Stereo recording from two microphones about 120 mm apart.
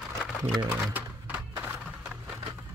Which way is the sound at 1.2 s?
15° right (ahead or behind).